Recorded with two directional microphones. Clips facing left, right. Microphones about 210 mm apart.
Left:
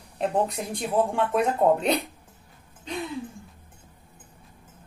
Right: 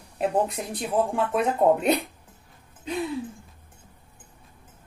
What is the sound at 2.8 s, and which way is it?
Music, centre (ahead or behind).